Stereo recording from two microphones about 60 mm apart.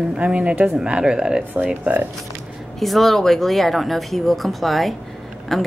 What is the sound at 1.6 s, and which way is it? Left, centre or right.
Speech, right.